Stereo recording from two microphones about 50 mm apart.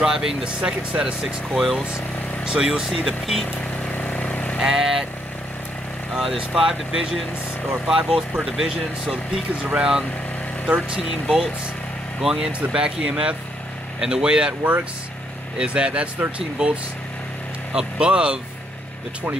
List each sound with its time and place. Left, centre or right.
0.0 s speech: centre
1.2 s speech: centre
2.9 s speech: centre
3.9 s vehicle: left
4.6 s speech: centre
6.1 s speech: centre
12.2 s speech: centre
15.6 s speech: right
17.7 s speech: right